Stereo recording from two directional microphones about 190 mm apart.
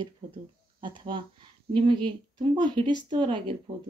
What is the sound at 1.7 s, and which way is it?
A woman's voice, 25° right (ahead or behind).